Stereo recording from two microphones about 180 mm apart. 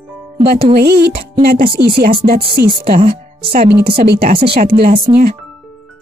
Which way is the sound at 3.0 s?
35° right (ahead or behind).